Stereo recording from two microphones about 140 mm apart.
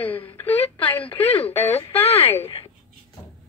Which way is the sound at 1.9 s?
45° left (ahead or behind).